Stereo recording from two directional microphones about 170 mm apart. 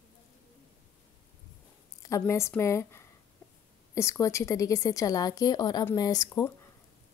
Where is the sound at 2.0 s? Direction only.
20° left (ahead or behind).